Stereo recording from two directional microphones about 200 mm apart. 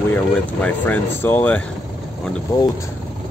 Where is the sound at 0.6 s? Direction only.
10° left (ahead or behind).